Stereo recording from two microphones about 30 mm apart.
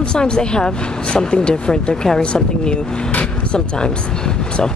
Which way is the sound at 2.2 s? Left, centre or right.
Left.